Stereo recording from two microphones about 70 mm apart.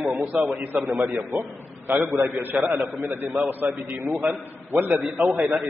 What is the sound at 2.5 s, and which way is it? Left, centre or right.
Speech, right.